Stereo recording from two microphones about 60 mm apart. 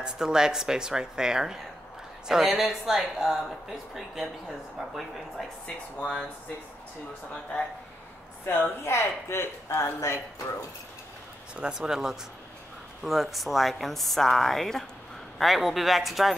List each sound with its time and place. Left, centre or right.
0.0 s a woman's voice: centre
8.5 s speech: left
11.5 s a woman's voice: centre